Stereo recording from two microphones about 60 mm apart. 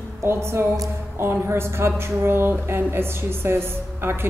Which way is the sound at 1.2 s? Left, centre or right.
Right.